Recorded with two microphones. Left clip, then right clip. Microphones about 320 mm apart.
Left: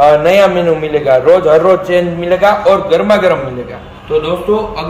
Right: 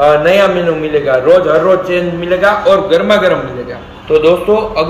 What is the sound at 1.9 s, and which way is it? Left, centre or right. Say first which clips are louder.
A man's voice: left 2 dB; left.